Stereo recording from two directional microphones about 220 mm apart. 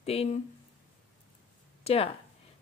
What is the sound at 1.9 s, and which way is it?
Speech, 25° left (ahead or behind).